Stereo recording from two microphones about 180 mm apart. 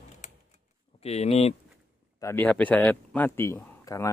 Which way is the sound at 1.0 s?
35° left (ahead or behind).